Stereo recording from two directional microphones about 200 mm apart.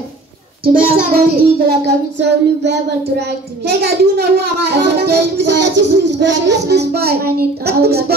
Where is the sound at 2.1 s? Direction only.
60° right (ahead or behind).